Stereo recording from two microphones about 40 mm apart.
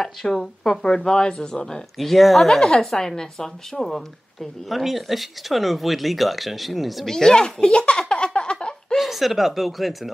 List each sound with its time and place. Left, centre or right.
0.0 s speech: centre
2.0 s a woman's voice: centre
7.1 s speech: centre
8.1 s a sound: centre
8.9 s speech: centre